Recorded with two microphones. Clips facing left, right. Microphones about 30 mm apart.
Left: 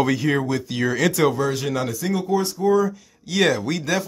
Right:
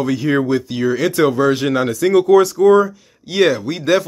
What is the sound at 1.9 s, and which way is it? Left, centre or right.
Speech, right.